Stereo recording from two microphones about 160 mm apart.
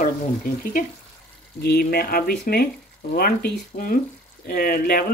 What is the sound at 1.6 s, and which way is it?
Speech, 75° left (ahead or behind).